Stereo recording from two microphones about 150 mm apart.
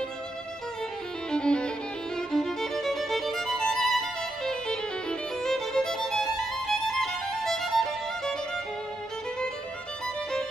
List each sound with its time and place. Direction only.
1.3 s violin: 5° left (ahead or behind)
2.1 s music: 5° left (ahead or behind)